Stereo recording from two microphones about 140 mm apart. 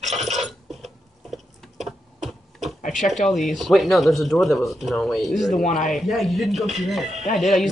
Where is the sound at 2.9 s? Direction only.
Centre (ahead or behind).